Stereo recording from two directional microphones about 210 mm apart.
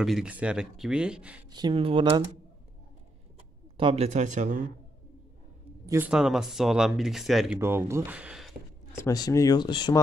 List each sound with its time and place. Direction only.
0.0 s speech: 5° right (ahead or behind)
1.5 s speech: 20° right (ahead or behind)
3.7 s speech: 25° right (ahead or behind)
5.9 s speech: 10° right (ahead or behind)
7.5 s speech: 10° right (ahead or behind)
8.9 s speech: 15° left (ahead or behind)